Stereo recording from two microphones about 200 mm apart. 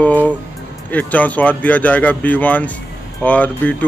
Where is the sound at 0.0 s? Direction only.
5° left (ahead or behind).